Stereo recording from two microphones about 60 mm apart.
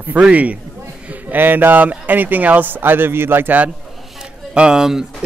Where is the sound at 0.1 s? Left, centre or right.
Right.